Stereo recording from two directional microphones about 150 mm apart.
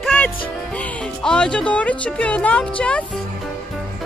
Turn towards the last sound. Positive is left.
turn(degrees=10)  # may be behind; listen again after turning